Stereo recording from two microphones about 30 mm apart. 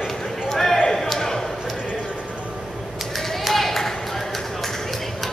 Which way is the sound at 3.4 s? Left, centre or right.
Centre.